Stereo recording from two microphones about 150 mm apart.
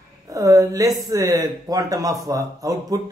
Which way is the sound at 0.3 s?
20° right (ahead or behind).